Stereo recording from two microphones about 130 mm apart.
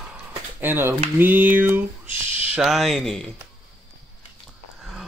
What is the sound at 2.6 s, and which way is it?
Speech, centre (ahead or behind).